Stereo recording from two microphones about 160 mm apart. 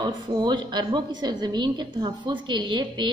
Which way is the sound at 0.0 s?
25° right (ahead or behind).